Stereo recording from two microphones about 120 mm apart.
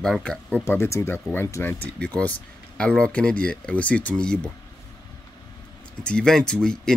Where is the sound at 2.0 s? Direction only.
10° left (ahead or behind).